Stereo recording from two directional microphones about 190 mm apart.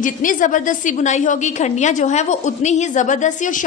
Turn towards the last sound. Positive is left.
turn(degrees=40)  # may be behind; listen again after turning